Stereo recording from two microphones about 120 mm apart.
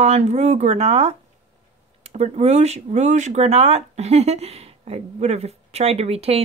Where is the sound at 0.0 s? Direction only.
70° right (ahead or behind).